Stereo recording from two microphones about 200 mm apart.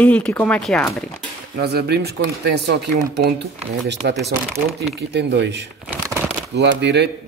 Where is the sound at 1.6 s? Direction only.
50° right (ahead or behind).